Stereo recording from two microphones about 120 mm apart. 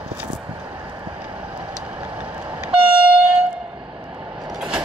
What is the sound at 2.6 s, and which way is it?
Train, 10° right (ahead or behind).